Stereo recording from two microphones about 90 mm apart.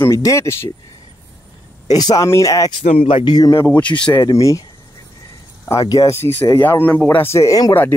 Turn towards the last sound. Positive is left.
turn(degrees=40)  # may be behind; listen again after turning